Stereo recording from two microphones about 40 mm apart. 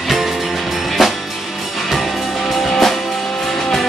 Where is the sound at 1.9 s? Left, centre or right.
Centre.